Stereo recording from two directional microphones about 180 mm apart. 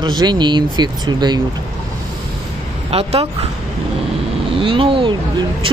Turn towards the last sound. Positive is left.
turn(degrees=-30)  # may be behind; listen again after turning